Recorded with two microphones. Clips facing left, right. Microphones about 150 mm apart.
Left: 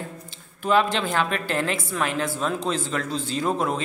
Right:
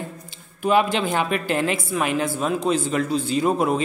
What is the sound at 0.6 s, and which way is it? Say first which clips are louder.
A woman's voice: right 2 dB; 15° right (ahead or behind).